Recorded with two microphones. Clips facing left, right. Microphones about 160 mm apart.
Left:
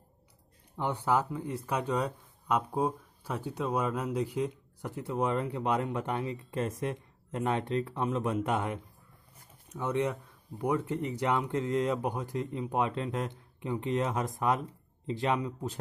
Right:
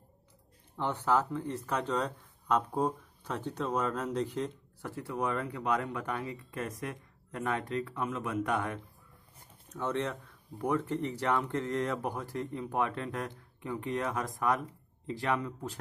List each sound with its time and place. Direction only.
0.7 s speech: 15° left (ahead or behind)